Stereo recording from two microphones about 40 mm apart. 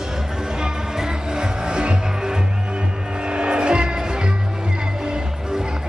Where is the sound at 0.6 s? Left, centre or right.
Centre.